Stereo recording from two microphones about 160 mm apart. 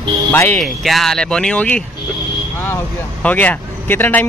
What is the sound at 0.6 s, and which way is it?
Speech, centre (ahead or behind).